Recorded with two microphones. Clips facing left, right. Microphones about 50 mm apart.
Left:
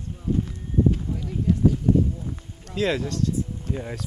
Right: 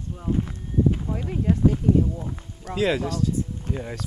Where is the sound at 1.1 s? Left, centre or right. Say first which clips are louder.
Right 1 dB; right.